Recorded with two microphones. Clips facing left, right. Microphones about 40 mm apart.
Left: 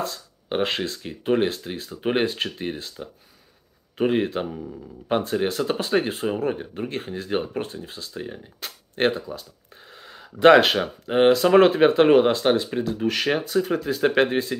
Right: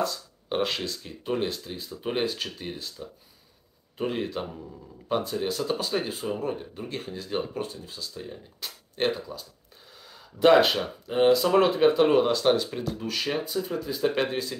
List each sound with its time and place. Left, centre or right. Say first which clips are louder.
0.5 s speech: left 3 dB; left
12.4 s speech: left 3 dB; left
13.1 s speech: left 5 dB; left